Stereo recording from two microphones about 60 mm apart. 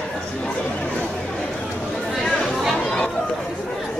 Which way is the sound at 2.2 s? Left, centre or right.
Centre.